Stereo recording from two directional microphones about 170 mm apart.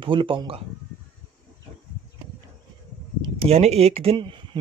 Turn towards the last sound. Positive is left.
turn(degrees=-30)  # may be behind; listen again after turning